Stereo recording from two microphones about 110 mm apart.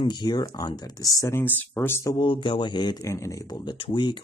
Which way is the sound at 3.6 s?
50° left (ahead or behind).